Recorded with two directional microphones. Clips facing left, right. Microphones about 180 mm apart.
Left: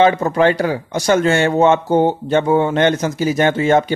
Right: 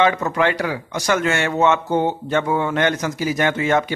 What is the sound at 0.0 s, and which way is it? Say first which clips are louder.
Speech: left 5 dB; 30° left (ahead or behind).